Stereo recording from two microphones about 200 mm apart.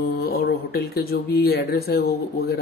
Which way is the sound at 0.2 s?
50° left (ahead or behind).